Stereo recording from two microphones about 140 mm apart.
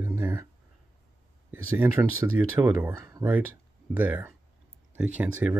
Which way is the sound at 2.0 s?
20° right (ahead or behind).